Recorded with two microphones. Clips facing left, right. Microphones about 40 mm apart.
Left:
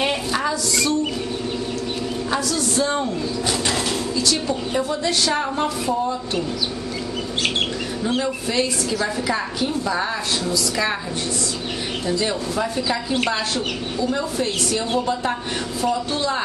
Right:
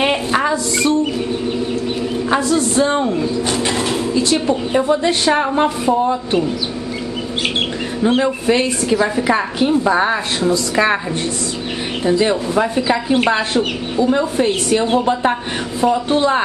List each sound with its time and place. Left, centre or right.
0.0 s a sound: right
2.3 s speech: right
8.0 s speech: right
12.1 s speech: right